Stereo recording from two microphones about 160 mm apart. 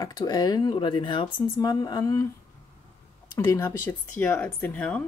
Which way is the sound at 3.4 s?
15° left (ahead or behind).